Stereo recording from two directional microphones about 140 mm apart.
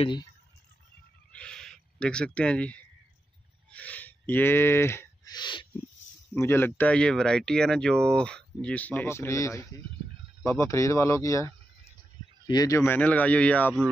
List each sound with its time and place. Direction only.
0.0 s speech: 35° left (ahead or behind)
1.3 s a sound: 5° left (ahead or behind)
3.7 s speech: 10° left (ahead or behind)
5.3 s speech: 30° left (ahead or behind)
6.3 s speech: 15° left (ahead or behind)